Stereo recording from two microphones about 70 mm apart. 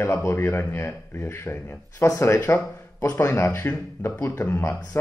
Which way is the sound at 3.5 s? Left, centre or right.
Left.